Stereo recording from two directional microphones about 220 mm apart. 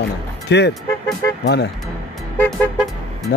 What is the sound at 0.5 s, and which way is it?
Music, 50° left (ahead or behind).